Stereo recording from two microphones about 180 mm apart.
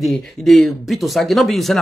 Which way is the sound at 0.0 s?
Centre (ahead or behind).